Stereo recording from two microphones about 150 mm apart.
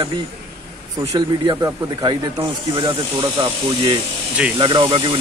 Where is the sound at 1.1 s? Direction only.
25° right (ahead or behind).